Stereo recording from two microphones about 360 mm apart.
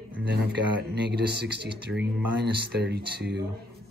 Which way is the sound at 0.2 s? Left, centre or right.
Right.